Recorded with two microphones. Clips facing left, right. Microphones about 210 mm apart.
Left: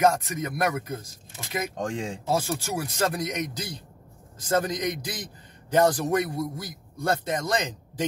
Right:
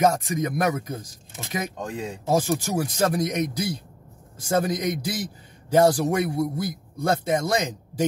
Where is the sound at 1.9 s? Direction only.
30° left (ahead or behind).